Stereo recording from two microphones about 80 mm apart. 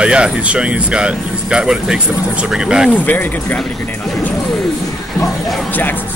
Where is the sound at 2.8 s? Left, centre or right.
Left.